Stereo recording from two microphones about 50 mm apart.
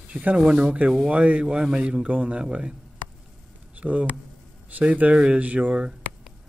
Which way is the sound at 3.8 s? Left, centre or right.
Right.